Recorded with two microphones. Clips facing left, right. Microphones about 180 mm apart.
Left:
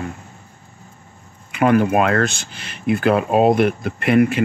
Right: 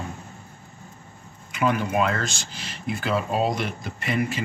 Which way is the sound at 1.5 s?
60° left (ahead or behind).